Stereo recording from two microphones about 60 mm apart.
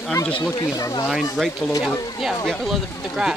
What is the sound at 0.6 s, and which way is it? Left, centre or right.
Speech, left.